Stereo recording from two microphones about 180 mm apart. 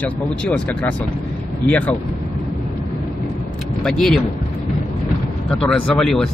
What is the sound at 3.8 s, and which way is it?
Speech, 5° left (ahead or behind).